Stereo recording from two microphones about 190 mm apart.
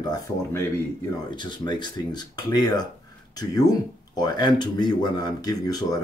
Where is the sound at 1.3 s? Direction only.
25° left (ahead or behind).